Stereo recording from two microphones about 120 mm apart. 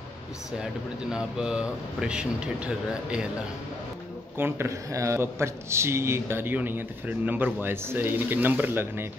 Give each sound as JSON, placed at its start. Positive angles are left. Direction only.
{"t": 1.1, "sound": "speech", "side_deg": -5}
{"t": 4.4, "sound": "speech", "side_deg": -20}